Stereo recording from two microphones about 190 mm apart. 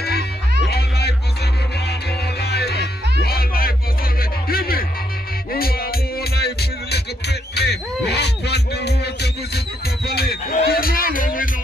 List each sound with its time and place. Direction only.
0.7 s music: 60° left (ahead or behind)
2.4 s music: 60° left (ahead or behind)
4.2 s a sound: 50° left (ahead or behind)
5.5 s music: 50° left (ahead or behind)